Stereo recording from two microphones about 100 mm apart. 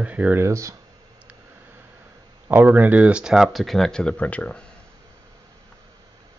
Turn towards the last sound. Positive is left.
turn(degrees=15)  # may be behind; listen again after turning